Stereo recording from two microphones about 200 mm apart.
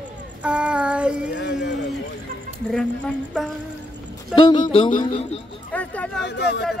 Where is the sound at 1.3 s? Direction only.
60° left (ahead or behind).